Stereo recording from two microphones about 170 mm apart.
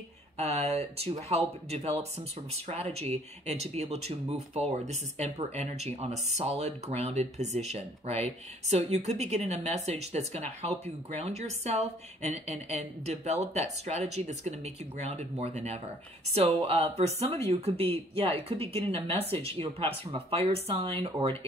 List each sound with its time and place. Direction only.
0.4 s speech: 40° right (ahead or behind)